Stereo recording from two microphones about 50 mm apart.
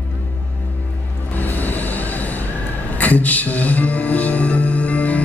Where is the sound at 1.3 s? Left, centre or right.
Left.